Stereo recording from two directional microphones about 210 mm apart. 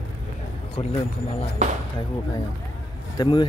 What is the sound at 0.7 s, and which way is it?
Speech, 25° left (ahead or behind).